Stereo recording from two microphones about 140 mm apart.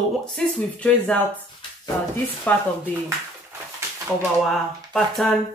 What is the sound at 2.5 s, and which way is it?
Speech, 10° left (ahead or behind).